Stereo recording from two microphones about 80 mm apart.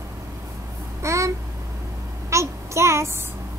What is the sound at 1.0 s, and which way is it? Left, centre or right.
Babbling, right.